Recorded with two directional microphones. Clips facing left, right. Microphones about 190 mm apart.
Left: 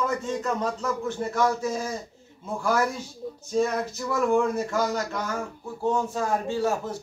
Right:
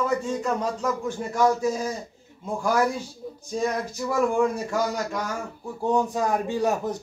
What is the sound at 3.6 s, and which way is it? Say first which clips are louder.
Speech: left 2 dB; 10° right (ahead or behind).